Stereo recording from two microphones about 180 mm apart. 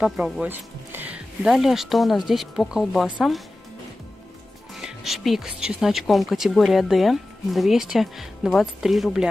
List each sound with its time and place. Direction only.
0.0 s speech: 5° right (ahead or behind)
4.7 s speech: centre (ahead or behind)